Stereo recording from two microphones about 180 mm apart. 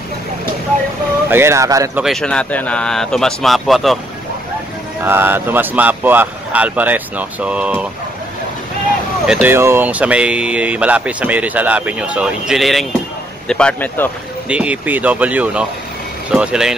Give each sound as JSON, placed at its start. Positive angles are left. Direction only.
{"t": 1.3, "sound": "speech", "side_deg": -15}
{"t": 2.0, "sound": "speech", "side_deg": 5}
{"t": 5.0, "sound": "speech", "side_deg": -10}
{"t": 9.2, "sound": "a man's voice", "side_deg": -5}
{"t": 14.5, "sound": "speech", "side_deg": -5}